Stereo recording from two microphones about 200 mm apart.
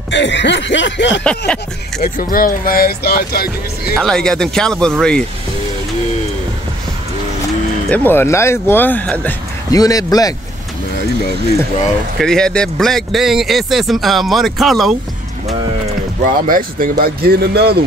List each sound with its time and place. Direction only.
0.1 s snicker: 65° left (ahead or behind)
2.0 s speech: 45° left (ahead or behind)
4.0 s speech: centre (ahead or behind)
7.9 s speech: 10° left (ahead or behind)
12.2 s speech: 5° left (ahead or behind)
16.4 s speech: 45° right (ahead or behind)